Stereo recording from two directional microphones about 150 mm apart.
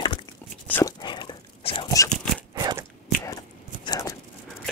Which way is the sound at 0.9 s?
30° left (ahead or behind).